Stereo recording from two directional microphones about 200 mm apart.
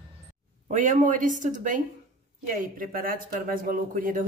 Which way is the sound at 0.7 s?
40° right (ahead or behind).